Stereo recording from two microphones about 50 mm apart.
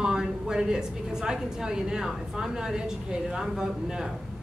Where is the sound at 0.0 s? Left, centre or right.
Centre.